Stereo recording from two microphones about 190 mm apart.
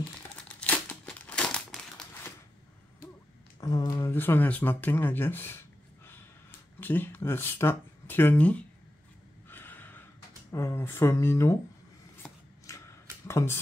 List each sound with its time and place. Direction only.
0.5 s crumpling: 5° left (ahead or behind)
3.6 s speech: 20° left (ahead or behind)
6.8 s speech: 10° left (ahead or behind)
9.5 s snort: 10° left (ahead or behind)
10.5 s speech: 15° left (ahead or behind)
12.2 s a sound: 15° left (ahead or behind)
13.3 s speech: 15° left (ahead or behind)